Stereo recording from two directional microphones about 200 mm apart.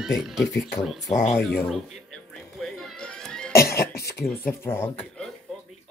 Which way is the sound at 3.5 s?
15° left (ahead or behind).